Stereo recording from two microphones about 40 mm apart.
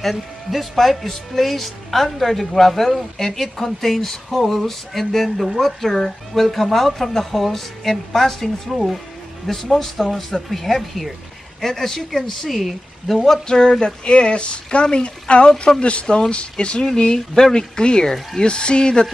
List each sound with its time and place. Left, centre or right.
0.0 s a woman's voice: centre
13.5 s a woman's voice: centre